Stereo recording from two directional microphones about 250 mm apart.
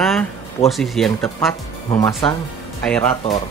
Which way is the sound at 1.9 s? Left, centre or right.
Centre.